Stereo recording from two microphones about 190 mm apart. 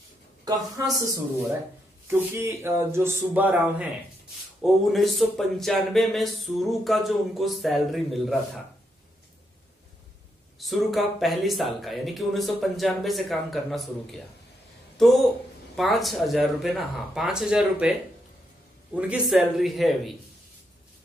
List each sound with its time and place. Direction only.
0.9 s speech: 20° right (ahead or behind); by 8.4 s centre (ahead or behind)
10.6 s speech: centre (ahead or behind)
18.9 s speech: 5° right (ahead or behind)